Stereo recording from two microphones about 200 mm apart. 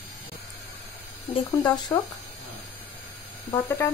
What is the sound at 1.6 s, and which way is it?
Speech, 20° left (ahead or behind).